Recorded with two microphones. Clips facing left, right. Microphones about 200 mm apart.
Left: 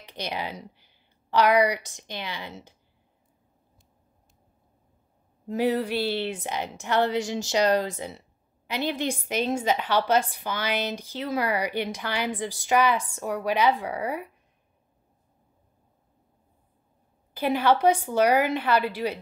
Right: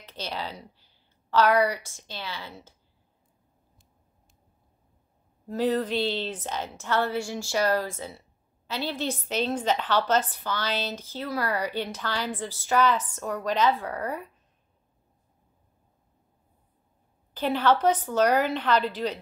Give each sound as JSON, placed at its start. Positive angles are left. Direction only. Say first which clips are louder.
{"t": 0.0, "sound": "a woman's voice", "louder": "left 2 dB", "side_deg": 15}
{"t": 5.5, "sound": "a woman's voice", "louder": "left 1 dB", "side_deg": 10}
{"t": 17.3, "sound": "a woman's voice", "louder": "left 1 dB", "side_deg": 10}